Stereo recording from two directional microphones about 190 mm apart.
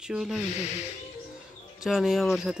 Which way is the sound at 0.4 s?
35° left (ahead or behind).